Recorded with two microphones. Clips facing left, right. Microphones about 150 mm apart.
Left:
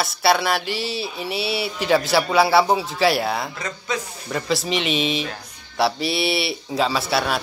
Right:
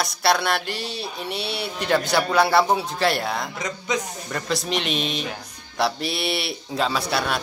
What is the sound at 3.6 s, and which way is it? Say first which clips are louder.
Speech: right 1 dB; 20° right (ahead or behind).